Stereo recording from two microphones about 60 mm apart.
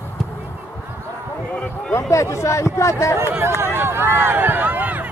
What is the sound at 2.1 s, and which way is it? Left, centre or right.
Speech, left.